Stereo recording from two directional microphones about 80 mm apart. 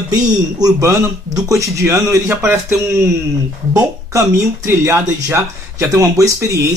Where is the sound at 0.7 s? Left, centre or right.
Right.